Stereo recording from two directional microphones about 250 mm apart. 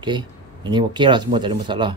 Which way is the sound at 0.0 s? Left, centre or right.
Centre.